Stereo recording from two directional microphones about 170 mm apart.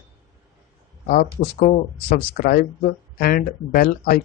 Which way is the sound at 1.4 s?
65° left (ahead or behind).